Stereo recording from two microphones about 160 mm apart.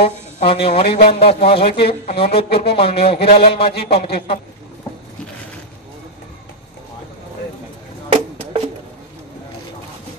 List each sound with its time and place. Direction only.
0.0 s a man's voice: 35° left (ahead or behind)